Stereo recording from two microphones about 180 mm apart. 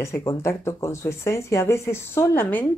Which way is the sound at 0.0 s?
15° left (ahead or behind).